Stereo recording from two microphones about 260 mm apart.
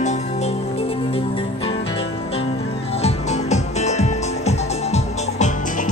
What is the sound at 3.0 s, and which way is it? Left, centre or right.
Music, left.